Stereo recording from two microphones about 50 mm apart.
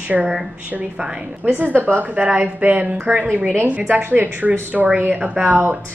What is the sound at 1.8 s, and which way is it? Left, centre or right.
A woman's voice, right.